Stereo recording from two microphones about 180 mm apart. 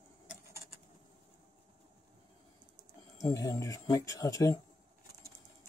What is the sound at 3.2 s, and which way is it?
Speech, 20° left (ahead or behind).